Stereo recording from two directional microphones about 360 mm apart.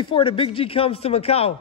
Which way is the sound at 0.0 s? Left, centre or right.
Centre.